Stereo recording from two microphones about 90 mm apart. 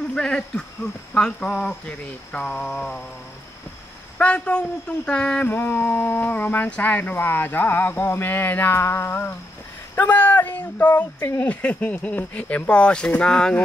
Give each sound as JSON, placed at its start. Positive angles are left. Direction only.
{"t": 0.1, "sound": "speech", "side_deg": 10}
{"t": 4.2, "sound": "speech", "side_deg": 15}